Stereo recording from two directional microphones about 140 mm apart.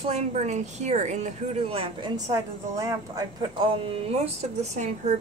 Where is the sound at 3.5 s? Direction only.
40° right (ahead or behind); by 5.1 s 55° right (ahead or behind).